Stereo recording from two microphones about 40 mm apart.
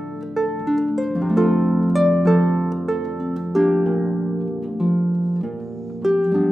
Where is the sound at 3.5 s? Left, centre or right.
Centre.